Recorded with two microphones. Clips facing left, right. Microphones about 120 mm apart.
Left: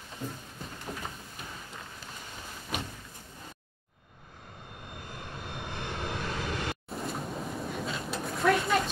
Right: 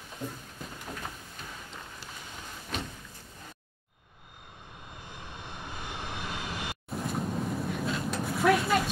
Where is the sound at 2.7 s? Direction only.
10° left (ahead or behind).